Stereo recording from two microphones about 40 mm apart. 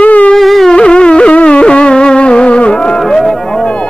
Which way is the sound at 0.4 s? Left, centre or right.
Centre.